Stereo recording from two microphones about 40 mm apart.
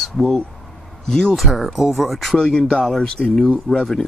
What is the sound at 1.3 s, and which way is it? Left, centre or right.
Speech, centre.